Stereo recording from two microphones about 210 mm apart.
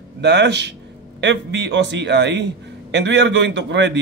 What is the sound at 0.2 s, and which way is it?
Speech, 55° right (ahead or behind).